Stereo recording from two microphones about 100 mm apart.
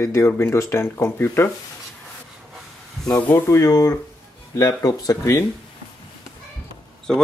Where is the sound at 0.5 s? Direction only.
30° left (ahead or behind).